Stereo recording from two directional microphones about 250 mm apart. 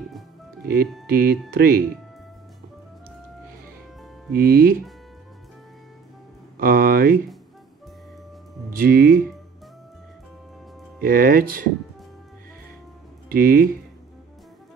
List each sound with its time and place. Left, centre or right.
1.0 s speech: right
4.3 s speech: right
6.6 s speech: right
8.6 s speech: right
11.0 s speech: right
13.3 s speech: right